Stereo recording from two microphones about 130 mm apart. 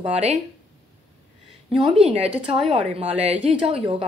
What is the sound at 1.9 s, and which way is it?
A woman's voice, 55° right (ahead or behind).